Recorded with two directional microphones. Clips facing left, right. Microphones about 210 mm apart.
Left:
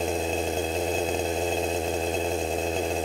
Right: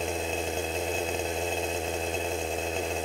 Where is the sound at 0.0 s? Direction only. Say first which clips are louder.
Left 4 dB; 35° left (ahead or behind).